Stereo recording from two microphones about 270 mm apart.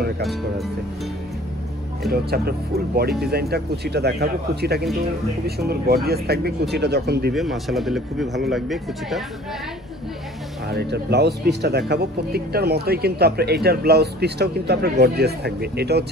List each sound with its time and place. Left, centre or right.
0.2 s speech: centre
2.0 s speech: right
7.3 s speech: centre
10.7 s speech: right